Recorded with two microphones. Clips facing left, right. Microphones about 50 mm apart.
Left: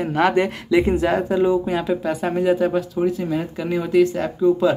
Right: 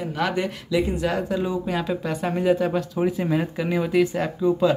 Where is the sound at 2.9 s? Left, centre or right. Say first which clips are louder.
Left 1 dB; centre.